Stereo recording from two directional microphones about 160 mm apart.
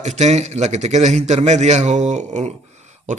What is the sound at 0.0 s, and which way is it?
A man's voice, 45° right (ahead or behind).